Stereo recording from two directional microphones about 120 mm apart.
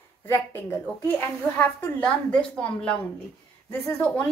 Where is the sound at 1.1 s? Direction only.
10° left (ahead or behind).